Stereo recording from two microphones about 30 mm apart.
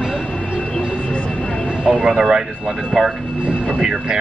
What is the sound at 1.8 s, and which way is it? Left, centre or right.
Speech, right.